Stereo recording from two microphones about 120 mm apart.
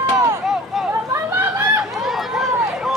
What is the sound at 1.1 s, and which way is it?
Chatter, 20° right (ahead or behind).